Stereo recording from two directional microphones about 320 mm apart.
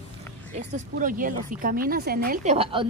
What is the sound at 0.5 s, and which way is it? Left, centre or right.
Speech, right.